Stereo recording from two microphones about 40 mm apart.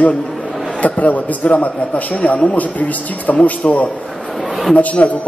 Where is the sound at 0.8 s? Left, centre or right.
Left.